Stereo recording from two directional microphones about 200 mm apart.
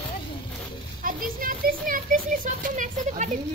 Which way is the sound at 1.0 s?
45° right (ahead or behind).